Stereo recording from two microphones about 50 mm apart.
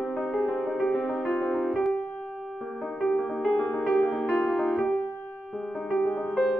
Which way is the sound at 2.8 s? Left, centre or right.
Centre.